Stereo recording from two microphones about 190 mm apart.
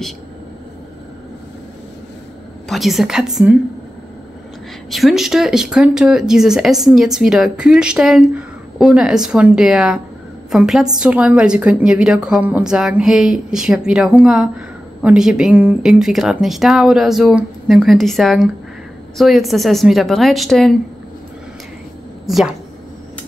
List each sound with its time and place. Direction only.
2.7 s speech: centre (ahead or behind)
4.9 s speech: centre (ahead or behind)
22.2 s a woman's voice: centre (ahead or behind)